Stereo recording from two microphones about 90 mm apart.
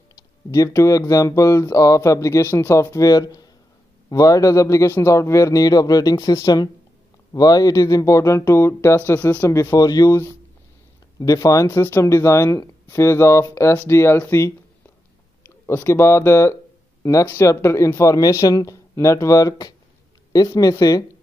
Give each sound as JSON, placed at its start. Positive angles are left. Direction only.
{"t": 0.5, "sound": "speech", "side_deg": 40}
{"t": 3.1, "sound": "speech", "side_deg": 45}
{"t": 9.5, "sound": "speech", "side_deg": 35}
{"t": 11.1, "sound": "speech", "side_deg": 40}
{"t": 15.4, "sound": "speech", "side_deg": 25}